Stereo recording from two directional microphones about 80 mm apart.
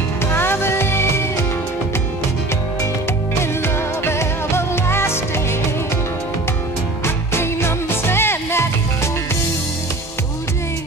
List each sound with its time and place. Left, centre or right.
0.3 s music: left
3.6 s music: left
7.3 s music: left